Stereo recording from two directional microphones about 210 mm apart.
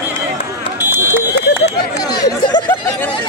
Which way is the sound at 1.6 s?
50° left (ahead or behind).